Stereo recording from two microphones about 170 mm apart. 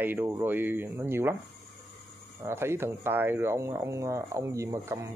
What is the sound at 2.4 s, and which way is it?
Speech, 15° right (ahead or behind).